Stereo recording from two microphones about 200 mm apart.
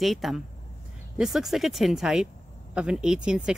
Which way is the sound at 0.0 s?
Centre (ahead or behind).